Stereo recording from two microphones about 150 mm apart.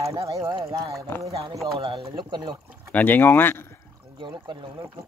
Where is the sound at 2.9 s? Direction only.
10° left (ahead or behind).